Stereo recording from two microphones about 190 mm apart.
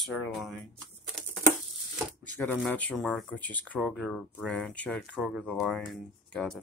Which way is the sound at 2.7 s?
5° left (ahead or behind).